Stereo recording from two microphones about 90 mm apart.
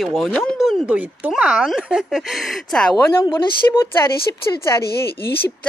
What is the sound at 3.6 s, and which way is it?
Speech, 30° left (ahead or behind).